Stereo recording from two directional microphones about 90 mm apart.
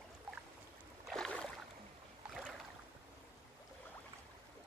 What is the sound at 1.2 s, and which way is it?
Boat, 10° left (ahead or behind).